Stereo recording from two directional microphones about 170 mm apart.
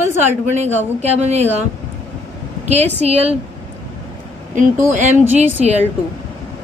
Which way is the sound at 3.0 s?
40° right (ahead or behind).